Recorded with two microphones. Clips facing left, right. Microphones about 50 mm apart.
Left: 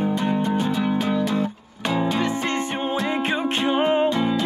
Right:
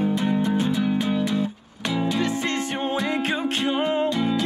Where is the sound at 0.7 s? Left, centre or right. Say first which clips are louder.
Left 1 dB; left.